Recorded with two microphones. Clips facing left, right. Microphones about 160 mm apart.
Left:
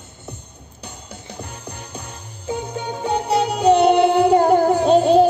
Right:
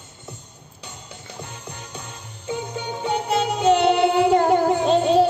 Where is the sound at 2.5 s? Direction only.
35° left (ahead or behind).